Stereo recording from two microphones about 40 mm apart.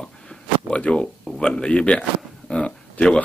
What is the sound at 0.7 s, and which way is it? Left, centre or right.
Speech, left.